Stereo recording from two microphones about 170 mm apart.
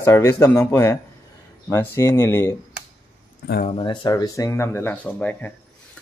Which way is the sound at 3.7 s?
30° left (ahead or behind).